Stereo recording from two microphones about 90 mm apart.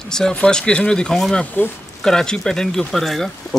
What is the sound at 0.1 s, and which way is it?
Speech, 10° left (ahead or behind).